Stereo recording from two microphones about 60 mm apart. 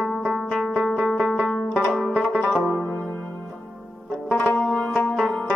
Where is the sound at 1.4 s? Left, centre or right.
Centre.